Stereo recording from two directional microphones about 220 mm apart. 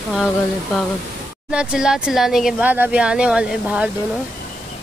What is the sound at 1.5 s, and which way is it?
Speech, 5° right (ahead or behind).